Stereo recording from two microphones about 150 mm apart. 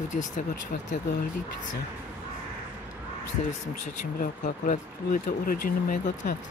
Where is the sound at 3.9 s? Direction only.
60° left (ahead or behind).